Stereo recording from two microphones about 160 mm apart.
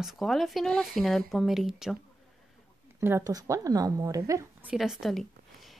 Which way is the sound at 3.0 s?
15° right (ahead or behind).